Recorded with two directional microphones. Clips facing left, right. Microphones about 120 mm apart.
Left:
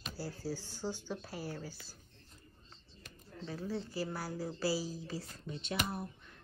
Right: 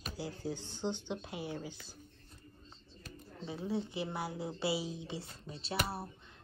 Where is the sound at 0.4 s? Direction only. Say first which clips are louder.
Right 2 dB; 20° right (ahead or behind).